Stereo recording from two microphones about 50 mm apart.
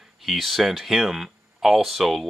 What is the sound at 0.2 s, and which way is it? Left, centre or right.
Speech, centre.